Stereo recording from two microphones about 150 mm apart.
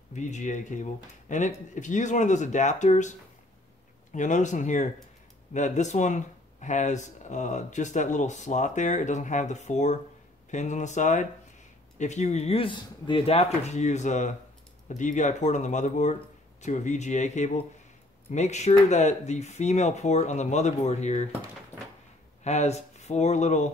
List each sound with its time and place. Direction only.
0.1 s speech: 55° left (ahead or behind)
22.4 s speech: 50° left (ahead or behind)